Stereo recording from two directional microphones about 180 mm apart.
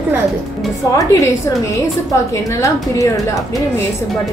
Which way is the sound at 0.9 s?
20° left (ahead or behind).